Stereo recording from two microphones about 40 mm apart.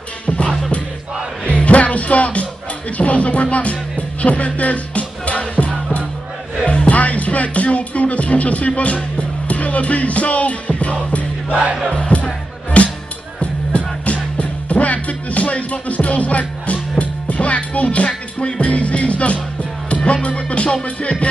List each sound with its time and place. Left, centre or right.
1.4 s music: left
11.9 s speech: left
12.7 s music: left